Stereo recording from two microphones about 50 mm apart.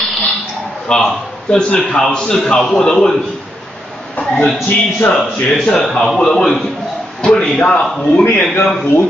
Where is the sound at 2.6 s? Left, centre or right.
Centre.